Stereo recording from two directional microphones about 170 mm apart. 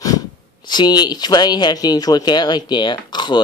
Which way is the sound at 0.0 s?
20° left (ahead or behind).